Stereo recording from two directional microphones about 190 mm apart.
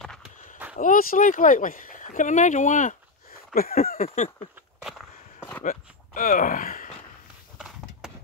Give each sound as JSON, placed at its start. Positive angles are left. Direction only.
{"t": 0.7, "sound": "speech", "side_deg": 45}
{"t": 5.6, "sound": "speech", "side_deg": 45}
{"t": 7.5, "sound": "a sound", "side_deg": -5}